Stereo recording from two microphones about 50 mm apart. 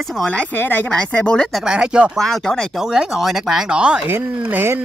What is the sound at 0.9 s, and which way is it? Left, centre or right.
Speech, centre.